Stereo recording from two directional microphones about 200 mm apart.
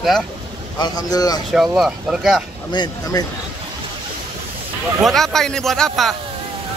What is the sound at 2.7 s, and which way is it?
Speech, 20° left (ahead or behind).